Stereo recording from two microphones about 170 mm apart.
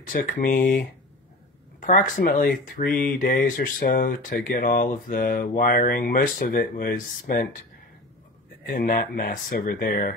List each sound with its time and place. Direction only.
0.1 s speech: 50° left (ahead or behind)
8.6 s speech: 55° left (ahead or behind)